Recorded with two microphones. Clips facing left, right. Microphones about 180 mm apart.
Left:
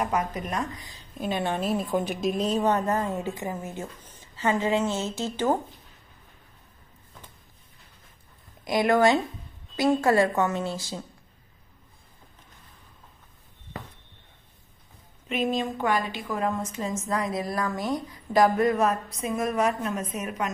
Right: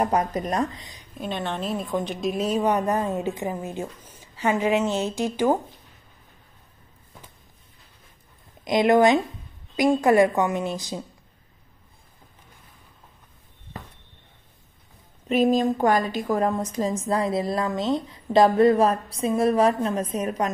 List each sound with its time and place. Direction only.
0.0 s a woman's voice: 35° right (ahead or behind)
0.7 s speech: 20° right (ahead or behind)
1.1 s a woman's voice: 5° left (ahead or behind); by 5.6 s 15° right (ahead or behind)
8.6 s a woman's voice: 20° right (ahead or behind)
15.2 s a woman's voice: 40° right (ahead or behind)